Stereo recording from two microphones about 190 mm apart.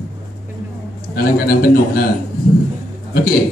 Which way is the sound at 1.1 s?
50° left (ahead or behind).